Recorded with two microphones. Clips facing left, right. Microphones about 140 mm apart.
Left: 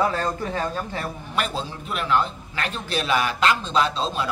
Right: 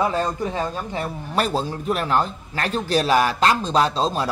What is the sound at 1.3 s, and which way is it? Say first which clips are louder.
A man's voice: right 5 dB; 40° right (ahead or behind).